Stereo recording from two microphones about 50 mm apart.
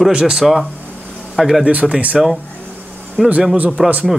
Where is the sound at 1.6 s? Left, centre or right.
Right.